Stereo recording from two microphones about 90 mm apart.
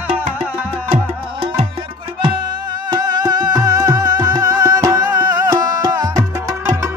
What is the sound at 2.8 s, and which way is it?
Music, 50° right (ahead or behind).